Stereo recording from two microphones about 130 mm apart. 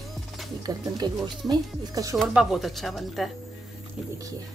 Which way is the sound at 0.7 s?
30° right (ahead or behind).